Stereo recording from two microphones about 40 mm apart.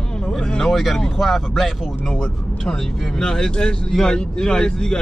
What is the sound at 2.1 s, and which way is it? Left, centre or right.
Speech, centre.